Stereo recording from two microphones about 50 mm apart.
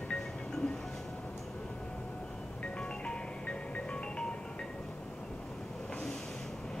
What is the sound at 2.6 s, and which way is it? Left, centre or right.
Marimba, centre.